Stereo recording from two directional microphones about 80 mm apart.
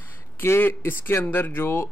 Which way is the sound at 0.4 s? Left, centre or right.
Left.